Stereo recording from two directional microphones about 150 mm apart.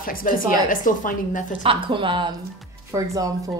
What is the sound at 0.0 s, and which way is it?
A woman's voice, 70° left (ahead or behind).